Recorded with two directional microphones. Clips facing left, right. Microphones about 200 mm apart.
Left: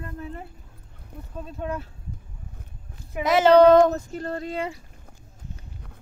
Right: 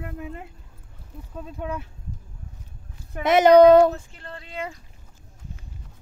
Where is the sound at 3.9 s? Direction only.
45° left (ahead or behind).